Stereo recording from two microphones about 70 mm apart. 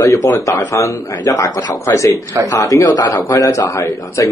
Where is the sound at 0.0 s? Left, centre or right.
Left.